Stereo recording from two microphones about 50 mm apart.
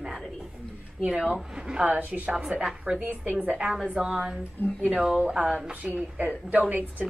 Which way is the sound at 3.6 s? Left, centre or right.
Centre.